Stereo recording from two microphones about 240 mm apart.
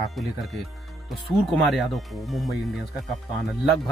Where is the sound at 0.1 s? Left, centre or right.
Centre.